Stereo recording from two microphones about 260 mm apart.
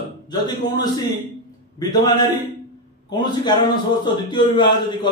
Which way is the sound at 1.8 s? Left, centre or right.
Centre.